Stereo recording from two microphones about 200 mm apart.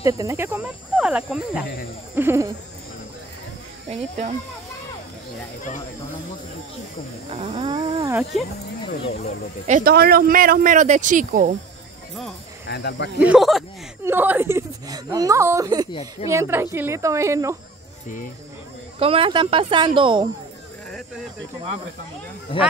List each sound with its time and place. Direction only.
0.0 s speech: 15° right (ahead or behind)
7.2 s speech: 30° right (ahead or behind)
8.3 s speech: centre (ahead or behind)
8.8 s speech: 25° left (ahead or behind)
9.7 s speech: 45° right (ahead or behind)
12.6 s speech: 55° left (ahead or behind)
13.2 s speech: 5° right (ahead or behind); by 15.9 s 20° right (ahead or behind)
15.9 s speech: 30° left (ahead or behind)
16.3 s speech: 15° right (ahead or behind)
18.9 s speech: 30° right (ahead or behind)
22.5 s speech: 25° left (ahead or behind)